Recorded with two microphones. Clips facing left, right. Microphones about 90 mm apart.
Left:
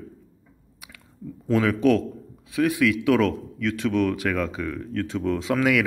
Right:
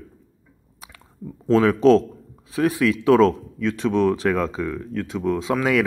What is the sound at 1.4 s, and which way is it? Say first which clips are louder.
Speech: right 5 dB; 25° right (ahead or behind).